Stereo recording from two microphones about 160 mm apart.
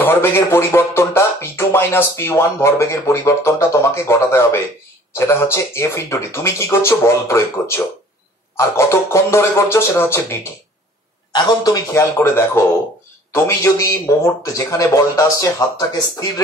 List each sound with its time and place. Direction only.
0.0 s music: 15° left (ahead or behind)
11.3 s speech: 25° left (ahead or behind)